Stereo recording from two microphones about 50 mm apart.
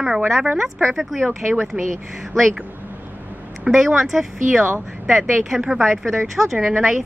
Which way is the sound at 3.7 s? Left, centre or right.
Centre.